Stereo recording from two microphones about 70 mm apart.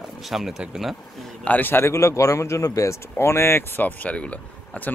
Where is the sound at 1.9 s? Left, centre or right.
Left.